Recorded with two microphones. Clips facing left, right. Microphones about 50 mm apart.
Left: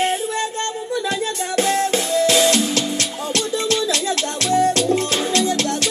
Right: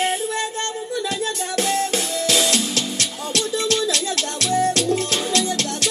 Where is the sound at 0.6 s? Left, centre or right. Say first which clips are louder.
Left 2 dB; left.